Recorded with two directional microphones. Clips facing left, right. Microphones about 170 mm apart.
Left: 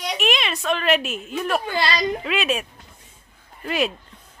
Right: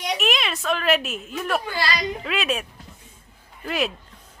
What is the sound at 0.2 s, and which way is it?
A woman's voice, centre (ahead or behind).